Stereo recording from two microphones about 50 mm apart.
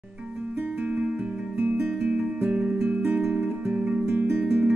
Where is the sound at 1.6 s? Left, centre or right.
Right.